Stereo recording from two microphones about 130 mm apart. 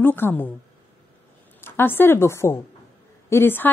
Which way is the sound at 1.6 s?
15° left (ahead or behind).